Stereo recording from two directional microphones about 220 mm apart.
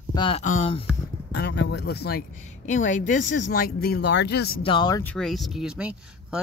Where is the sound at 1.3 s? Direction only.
50° left (ahead or behind).